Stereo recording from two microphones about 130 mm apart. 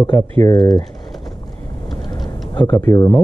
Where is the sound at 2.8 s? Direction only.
25° left (ahead or behind).